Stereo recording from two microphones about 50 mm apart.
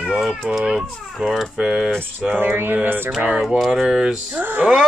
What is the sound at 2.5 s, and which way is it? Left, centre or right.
Speech, right.